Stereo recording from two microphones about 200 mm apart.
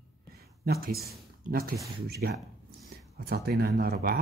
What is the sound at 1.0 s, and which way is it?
Speech, 50° right (ahead or behind).